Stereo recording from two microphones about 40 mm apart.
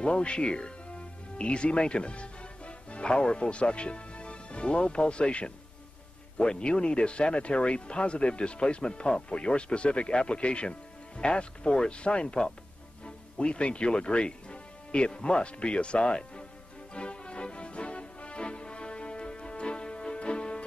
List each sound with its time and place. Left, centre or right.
0.0 s speech: left
16.9 s music: left